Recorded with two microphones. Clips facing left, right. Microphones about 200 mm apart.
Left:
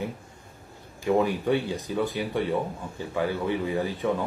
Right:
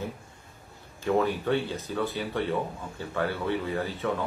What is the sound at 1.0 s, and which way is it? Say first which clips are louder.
Speech: left 2 dB; 15° left (ahead or behind).